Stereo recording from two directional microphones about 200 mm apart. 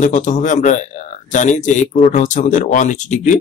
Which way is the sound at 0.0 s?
40° left (ahead or behind).